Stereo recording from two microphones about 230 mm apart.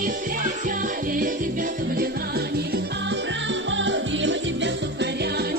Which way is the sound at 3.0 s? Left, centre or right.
Right.